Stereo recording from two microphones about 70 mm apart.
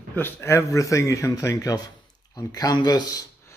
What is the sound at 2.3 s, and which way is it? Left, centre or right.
Speech, left.